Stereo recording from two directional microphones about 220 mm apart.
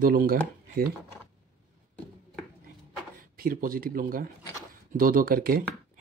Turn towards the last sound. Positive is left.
turn(degrees=-40)  # may be behind; listen again after turning